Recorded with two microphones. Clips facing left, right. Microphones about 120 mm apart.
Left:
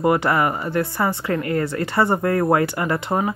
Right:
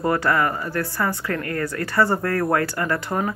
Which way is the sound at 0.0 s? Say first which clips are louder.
Left 2 dB; 20° left (ahead or behind).